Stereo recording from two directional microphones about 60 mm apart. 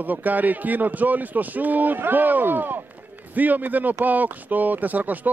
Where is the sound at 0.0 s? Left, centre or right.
Right.